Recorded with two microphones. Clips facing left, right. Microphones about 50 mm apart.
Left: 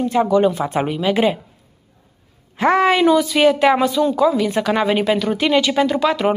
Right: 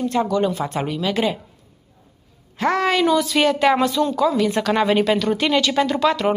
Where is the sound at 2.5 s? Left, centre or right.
Centre.